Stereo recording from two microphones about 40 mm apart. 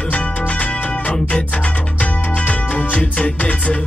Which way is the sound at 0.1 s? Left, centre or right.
Left.